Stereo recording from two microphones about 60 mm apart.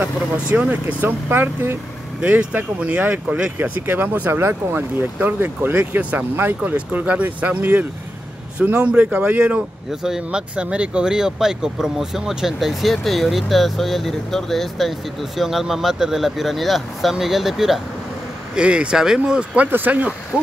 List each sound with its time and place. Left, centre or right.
0.5 s speech: right
1.0 s speech: right; by 3.5 s centre
3.5 s speech: right
5.8 s speech: right
10.0 s speech: centre
10.5 s speech: centre
18.5 s speech: centre
19.6 s speech: right